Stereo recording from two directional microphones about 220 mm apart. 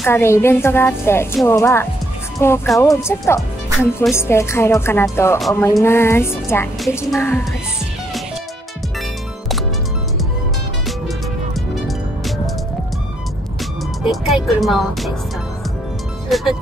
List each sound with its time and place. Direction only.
0.0 s a woman's voice: 10° left (ahead or behind)
14.0 s speech: centre (ahead or behind)
16.3 s speech: centre (ahead or behind)